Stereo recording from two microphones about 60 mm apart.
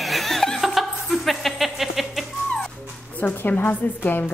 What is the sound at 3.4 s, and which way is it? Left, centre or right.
Speech, left.